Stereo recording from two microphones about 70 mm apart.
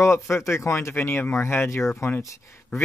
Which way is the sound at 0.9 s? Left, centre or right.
Left.